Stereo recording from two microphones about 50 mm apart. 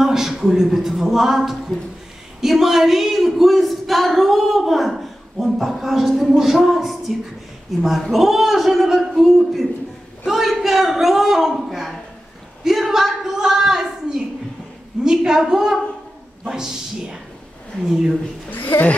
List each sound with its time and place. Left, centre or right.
0.0 s speech: centre
12.6 s a sound: centre
15.0 s speech: centre
18.7 s speech: left